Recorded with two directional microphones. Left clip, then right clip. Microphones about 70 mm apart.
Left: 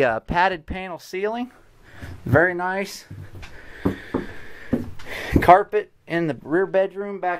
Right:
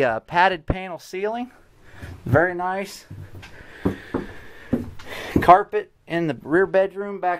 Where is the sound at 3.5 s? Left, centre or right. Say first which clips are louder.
Even; centre.